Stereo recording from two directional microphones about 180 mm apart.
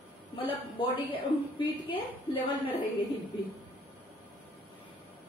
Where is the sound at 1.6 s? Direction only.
30° left (ahead or behind).